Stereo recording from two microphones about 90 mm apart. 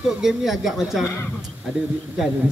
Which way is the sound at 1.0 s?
30° left (ahead or behind).